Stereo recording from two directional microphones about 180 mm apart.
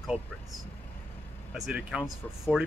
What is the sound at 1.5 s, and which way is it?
Speech, 5° right (ahead or behind).